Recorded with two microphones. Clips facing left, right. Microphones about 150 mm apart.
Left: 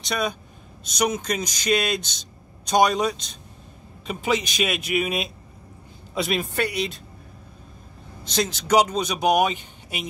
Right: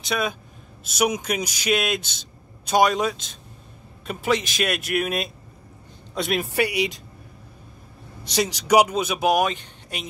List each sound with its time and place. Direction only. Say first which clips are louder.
0.0 s a man's voice: even; 5° right (ahead or behind)
6.5 s speech: right 3 dB; 10° right (ahead or behind)
8.4 s a man's voice: right 2 dB; 10° right (ahead or behind)